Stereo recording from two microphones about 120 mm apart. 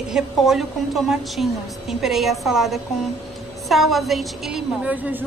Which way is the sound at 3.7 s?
Centre (ahead or behind).